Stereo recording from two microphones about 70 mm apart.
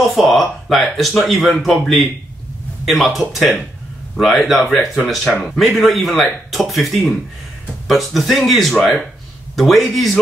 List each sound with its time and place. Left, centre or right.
0.1 s speech: centre